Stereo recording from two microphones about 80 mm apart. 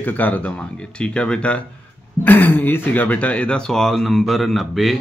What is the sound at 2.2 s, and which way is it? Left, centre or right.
Speech, left.